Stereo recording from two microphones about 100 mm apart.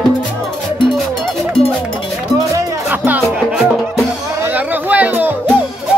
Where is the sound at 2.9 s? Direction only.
20° right (ahead or behind).